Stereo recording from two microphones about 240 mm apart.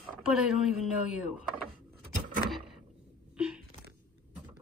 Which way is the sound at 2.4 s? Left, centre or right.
Centre.